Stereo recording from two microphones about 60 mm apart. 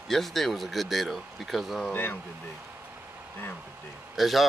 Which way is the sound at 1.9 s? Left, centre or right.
Left.